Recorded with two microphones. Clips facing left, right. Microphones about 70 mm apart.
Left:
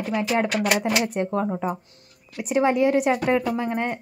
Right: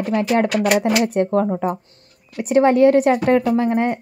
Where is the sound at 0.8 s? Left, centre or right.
Centre.